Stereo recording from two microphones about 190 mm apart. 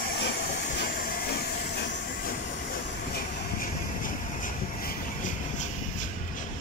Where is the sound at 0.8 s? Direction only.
55° left (ahead or behind).